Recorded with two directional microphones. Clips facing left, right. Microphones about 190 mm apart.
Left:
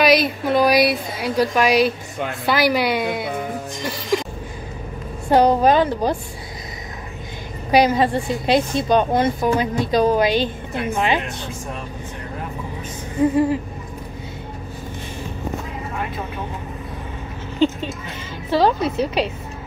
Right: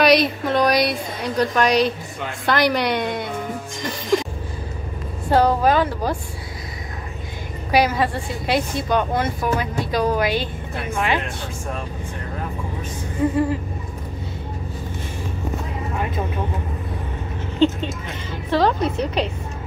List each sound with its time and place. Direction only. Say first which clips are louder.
0.0 s speech: even; centre (ahead or behind)
4.1 s a sound: right 2 dB; 5° left (ahead or behind)
5.3 s a woman's voice: left 2 dB; 15° left (ahead or behind)
7.7 s a woman's voice: left 3 dB; 20° left (ahead or behind)
13.2 s a woman's voice: left 3 dB; 15° left (ahead or behind)
18.5 s a woman's voice: left 1 dB; 10° left (ahead or behind)